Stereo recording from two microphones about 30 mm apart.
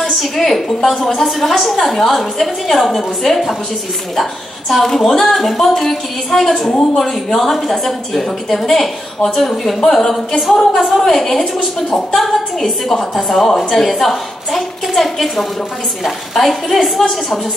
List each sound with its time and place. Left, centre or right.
0.4 s a woman's voice: centre
4.7 s a woman's voice: centre
10.5 s a woman's voice: centre
10.8 s a woman's voice: centre